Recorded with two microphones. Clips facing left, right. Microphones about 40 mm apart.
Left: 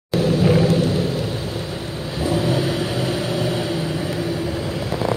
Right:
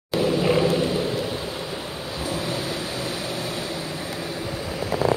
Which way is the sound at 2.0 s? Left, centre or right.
Left.